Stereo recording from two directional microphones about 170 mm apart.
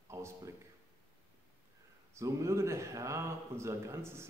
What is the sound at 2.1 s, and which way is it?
Speech, 15° right (ahead or behind).